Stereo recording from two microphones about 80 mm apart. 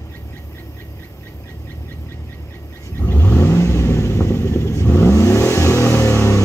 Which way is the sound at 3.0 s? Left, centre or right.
Left.